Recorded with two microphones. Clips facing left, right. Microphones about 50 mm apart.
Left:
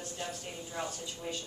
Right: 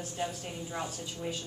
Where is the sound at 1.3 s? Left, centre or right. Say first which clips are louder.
Right 2 dB; centre.